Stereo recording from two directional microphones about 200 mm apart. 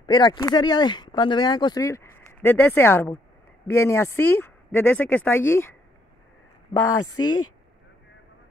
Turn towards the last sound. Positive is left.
turn(degrees=20)  # may be behind; listen again after turning